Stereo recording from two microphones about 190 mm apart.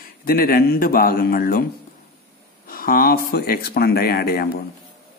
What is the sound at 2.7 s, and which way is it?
Speech, 50° left (ahead or behind).